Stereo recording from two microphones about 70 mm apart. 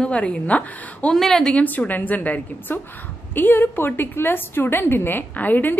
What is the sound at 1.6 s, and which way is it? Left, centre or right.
A woman's voice, left.